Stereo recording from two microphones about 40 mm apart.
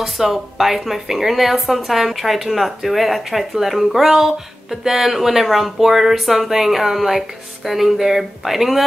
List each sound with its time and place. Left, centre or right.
0.0 s speech: centre